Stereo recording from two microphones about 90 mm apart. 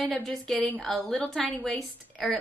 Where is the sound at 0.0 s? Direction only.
5° left (ahead or behind).